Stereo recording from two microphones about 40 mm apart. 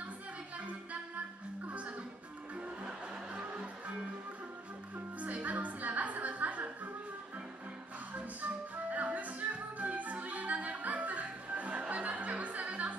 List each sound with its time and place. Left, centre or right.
3.3 s music: right
5.2 s music: right
8.4 s music: right